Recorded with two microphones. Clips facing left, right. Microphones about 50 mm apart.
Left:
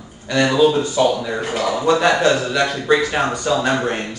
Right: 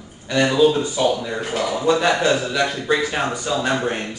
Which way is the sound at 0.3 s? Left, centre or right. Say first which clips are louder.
Left 1 dB; left.